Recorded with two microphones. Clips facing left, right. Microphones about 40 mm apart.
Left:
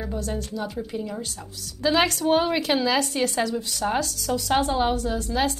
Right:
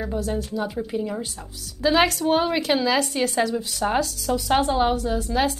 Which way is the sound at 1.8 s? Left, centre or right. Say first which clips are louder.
Right 2 dB; centre.